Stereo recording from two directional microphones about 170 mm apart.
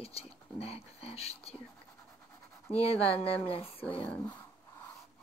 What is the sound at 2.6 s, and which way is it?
Speech, 35° left (ahead or behind).